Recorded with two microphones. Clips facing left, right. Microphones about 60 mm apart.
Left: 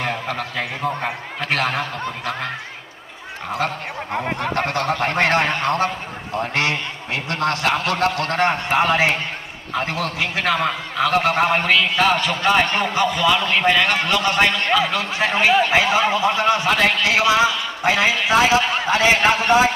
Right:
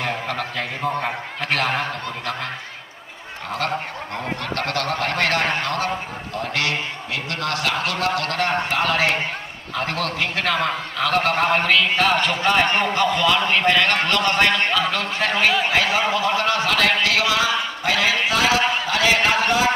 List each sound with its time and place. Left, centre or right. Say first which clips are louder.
0.0 s a man's voice: left 1 dB; centre
3.5 s a man's voice: left 1 dB; centre
9.8 s a man's voice: left 1 dB; centre; by 19.7 s left